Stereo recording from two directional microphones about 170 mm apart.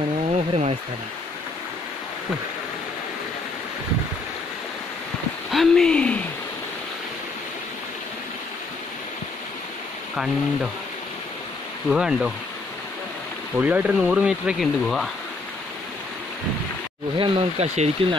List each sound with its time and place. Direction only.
0.3 s a sound: 40° right (ahead or behind)
5.5 s hoot: centre (ahead or behind)
10.1 s speech: centre (ahead or behind)
11.9 s speech: 5° right (ahead or behind)
13.6 s speech: 10° right (ahead or behind)
17.2 s speech: 35° right (ahead or behind)